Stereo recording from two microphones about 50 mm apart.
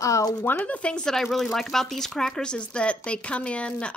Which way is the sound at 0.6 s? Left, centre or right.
Left.